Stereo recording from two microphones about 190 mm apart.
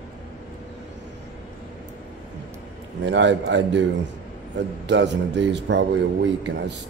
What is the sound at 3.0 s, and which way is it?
A man's voice, 70° right (ahead or behind).